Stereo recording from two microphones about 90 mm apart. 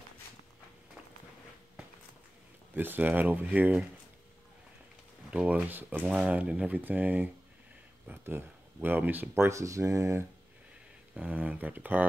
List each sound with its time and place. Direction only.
2.7 s speech: 20° right (ahead or behind)
5.3 s speech: 15° right (ahead or behind); by 10.2 s 35° right (ahead or behind)
11.1 s speech: 20° right (ahead or behind)